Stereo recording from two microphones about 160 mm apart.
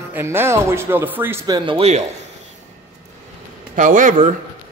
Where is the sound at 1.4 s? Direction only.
25° right (ahead or behind).